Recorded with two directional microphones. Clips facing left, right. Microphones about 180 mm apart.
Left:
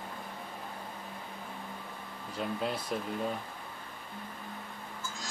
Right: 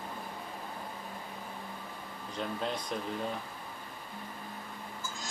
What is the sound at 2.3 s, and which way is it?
Speech, 5° left (ahead or behind).